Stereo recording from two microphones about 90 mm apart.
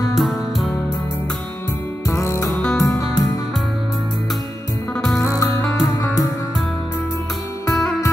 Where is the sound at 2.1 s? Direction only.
35° left (ahead or behind).